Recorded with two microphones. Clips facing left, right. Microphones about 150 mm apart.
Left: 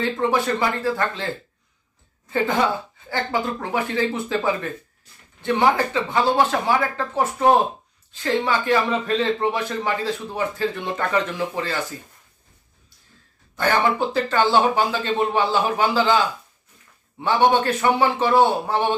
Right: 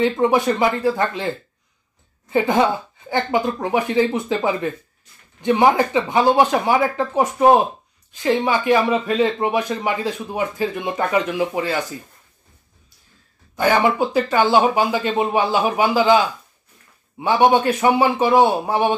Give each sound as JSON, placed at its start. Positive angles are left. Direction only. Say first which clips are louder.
{"t": 0.0, "sound": "a man's voice", "louder": "right 5 dB", "side_deg": -15}
{"t": 13.6, "sound": "a man's voice", "louder": "right 3 dB", "side_deg": -10}